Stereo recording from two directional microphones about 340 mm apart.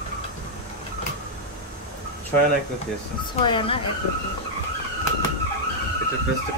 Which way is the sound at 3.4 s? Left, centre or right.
Centre.